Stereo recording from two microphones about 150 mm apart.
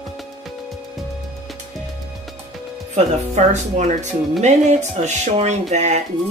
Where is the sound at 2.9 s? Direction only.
50° right (ahead or behind).